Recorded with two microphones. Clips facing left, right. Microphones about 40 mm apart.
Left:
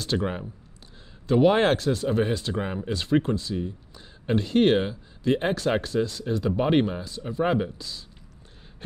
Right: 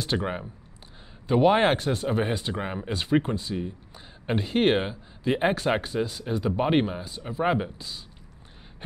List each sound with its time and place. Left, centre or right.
0.1 s speech: centre
1.8 s speech: right